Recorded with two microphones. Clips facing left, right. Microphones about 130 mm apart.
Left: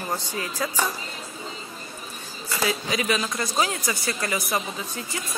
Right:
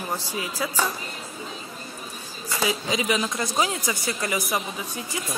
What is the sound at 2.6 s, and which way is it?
Speech, 15° right (ahead or behind).